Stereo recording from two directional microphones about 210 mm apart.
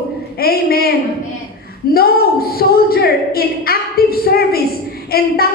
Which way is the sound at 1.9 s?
45° left (ahead or behind).